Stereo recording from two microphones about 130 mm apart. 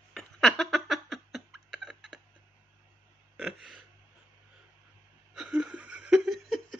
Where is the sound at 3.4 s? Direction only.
Centre (ahead or behind).